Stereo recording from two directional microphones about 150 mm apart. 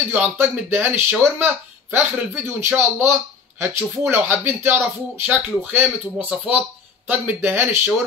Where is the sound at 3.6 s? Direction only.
15° right (ahead or behind).